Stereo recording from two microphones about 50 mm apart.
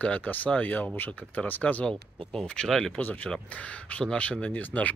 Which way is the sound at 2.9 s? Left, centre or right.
Left.